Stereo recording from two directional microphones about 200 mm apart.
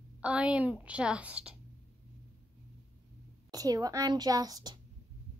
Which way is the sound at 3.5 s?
20° right (ahead or behind).